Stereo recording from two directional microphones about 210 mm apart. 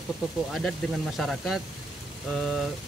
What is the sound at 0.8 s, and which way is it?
Speech, centre (ahead or behind).